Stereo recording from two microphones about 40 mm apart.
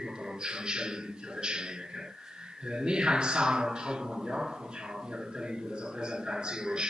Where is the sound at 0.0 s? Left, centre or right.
Centre.